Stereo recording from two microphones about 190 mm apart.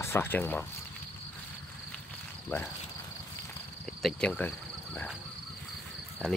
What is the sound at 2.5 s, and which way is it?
Speech, 10° left (ahead or behind).